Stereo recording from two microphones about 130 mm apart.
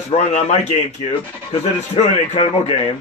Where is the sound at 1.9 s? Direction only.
50° left (ahead or behind).